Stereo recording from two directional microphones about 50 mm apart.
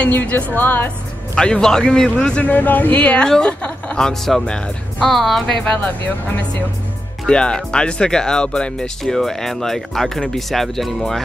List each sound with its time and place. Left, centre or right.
0.1 s speech: left
1.3 s speech: centre
2.4 s speech: left
3.3 s speech: centre
5.8 s speech: left
7.2 s speech: centre
9.0 s speech: centre